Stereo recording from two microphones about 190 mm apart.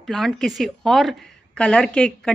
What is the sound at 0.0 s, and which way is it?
A woman's voice, centre (ahead or behind).